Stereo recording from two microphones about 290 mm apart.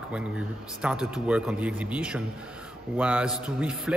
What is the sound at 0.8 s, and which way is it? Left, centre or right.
A man's voice, centre.